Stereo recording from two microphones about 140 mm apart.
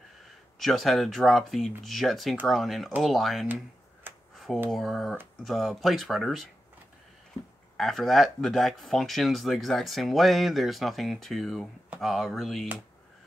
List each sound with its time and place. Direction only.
0.6 s speech: centre (ahead or behind)
4.6 s speech: centre (ahead or behind)
7.7 s speech: centre (ahead or behind)